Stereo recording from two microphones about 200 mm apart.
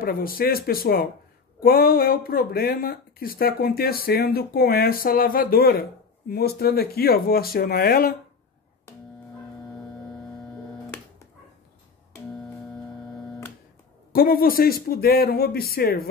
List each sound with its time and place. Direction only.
0.0 s speech: 45° left (ahead or behind)
14.1 s speech: 45° left (ahead or behind)